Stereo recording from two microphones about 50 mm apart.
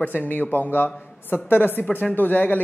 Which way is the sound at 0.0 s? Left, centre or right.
Left.